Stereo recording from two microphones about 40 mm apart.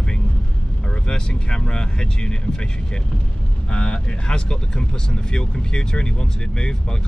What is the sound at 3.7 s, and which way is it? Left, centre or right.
Speech, left.